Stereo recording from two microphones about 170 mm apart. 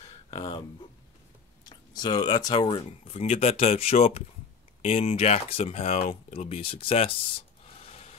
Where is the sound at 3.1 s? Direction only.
40° left (ahead or behind).